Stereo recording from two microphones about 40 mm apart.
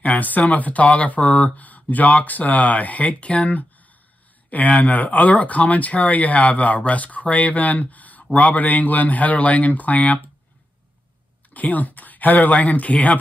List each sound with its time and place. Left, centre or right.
0.0 s speech: left
1.6 s speech: left
11.5 s speech: left